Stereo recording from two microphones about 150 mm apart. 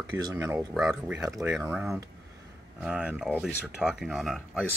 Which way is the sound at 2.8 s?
10° right (ahead or behind).